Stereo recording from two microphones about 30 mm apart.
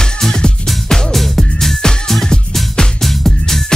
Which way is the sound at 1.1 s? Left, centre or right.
Centre.